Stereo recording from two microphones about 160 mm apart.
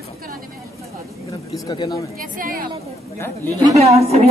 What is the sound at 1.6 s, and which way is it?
Speech, 25° left (ahead or behind).